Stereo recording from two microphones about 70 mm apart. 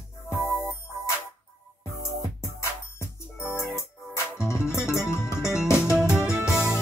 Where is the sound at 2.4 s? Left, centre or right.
Left.